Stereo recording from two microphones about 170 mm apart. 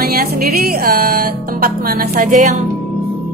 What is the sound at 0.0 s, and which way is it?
Speech, 60° right (ahead or behind).